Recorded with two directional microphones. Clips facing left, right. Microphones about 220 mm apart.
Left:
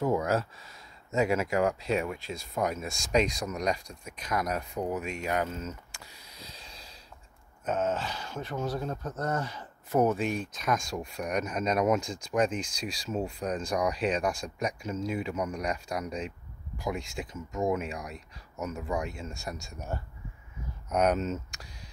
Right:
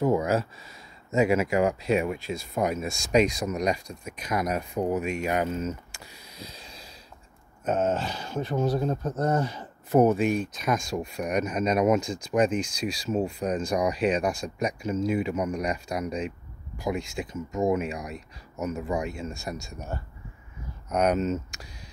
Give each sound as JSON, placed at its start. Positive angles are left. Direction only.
{"t": 0.0, "sound": "speech", "side_deg": -5}
{"t": 7.9, "sound": "speech", "side_deg": -30}
{"t": 10.1, "sound": "speech", "side_deg": -5}
{"t": 20.9, "sound": "speech", "side_deg": 0}